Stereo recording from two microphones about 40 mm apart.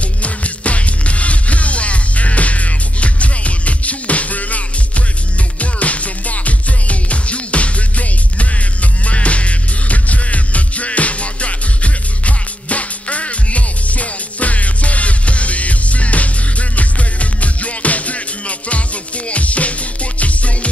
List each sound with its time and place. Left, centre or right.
0.2 s music: left